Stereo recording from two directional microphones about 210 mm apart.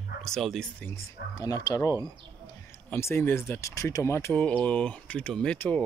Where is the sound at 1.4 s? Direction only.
15° left (ahead or behind).